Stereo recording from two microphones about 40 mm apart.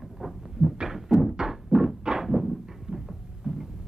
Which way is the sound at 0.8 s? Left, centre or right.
Centre.